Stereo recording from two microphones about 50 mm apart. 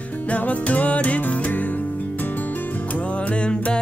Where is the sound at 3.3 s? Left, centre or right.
Centre.